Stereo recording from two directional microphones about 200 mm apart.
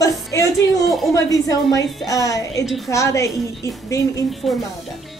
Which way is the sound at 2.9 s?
15° left (ahead or behind).